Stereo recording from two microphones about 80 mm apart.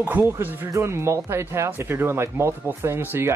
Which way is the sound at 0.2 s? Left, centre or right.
Right.